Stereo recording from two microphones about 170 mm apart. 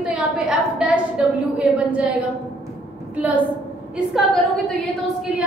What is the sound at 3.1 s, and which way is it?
Speech, 10° right (ahead or behind).